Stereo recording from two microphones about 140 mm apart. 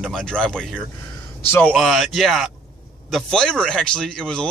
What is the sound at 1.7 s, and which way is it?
A man's voice, centre (ahead or behind).